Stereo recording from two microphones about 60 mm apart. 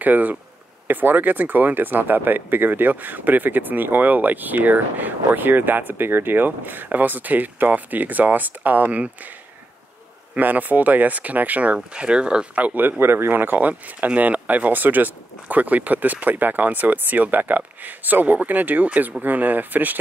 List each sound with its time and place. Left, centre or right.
0.0 s speech: right
10.3 s speech: right
12.5 s speech: right
13.0 s speech: right